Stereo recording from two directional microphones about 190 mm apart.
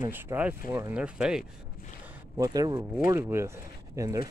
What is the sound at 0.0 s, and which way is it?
Speech, 10° right (ahead or behind).